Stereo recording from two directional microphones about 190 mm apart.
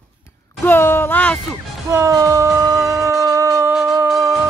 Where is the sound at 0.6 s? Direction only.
10° left (ahead or behind).